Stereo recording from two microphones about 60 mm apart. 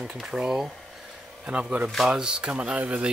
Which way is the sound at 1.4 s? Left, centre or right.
Right.